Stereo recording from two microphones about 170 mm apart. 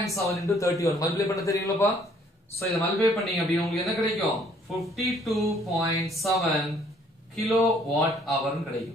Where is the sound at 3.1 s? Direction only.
Centre (ahead or behind).